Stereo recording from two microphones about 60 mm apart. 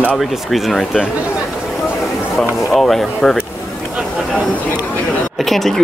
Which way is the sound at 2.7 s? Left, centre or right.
Centre.